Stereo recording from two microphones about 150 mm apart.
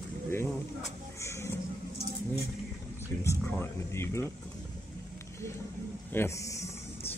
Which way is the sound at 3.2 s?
15° left (ahead or behind).